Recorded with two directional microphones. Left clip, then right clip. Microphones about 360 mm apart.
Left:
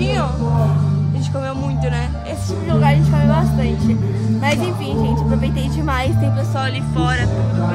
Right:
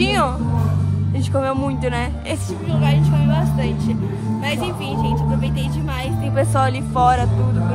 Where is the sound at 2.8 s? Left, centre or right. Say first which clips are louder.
Left 4 dB; centre.